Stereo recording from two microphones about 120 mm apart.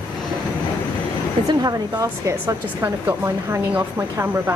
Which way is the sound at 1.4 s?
30° right (ahead or behind).